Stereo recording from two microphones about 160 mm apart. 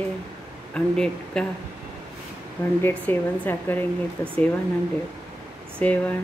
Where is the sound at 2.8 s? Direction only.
15° left (ahead or behind).